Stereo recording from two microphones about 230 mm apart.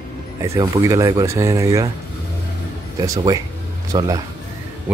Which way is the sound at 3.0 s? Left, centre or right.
Centre.